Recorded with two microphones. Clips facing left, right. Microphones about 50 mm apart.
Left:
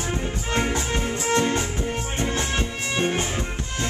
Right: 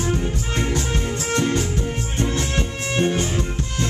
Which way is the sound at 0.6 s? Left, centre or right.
Centre.